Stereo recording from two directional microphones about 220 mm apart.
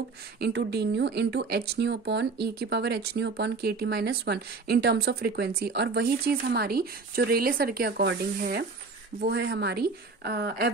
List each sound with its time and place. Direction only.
0.4 s speech: 50° right (ahead or behind)